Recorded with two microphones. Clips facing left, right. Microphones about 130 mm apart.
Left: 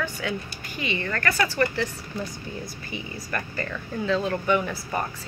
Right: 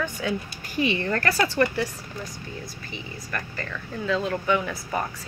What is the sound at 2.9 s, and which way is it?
Speech, 5° left (ahead or behind).